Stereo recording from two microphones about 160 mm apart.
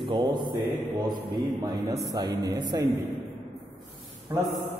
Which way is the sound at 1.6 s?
25° right (ahead or behind).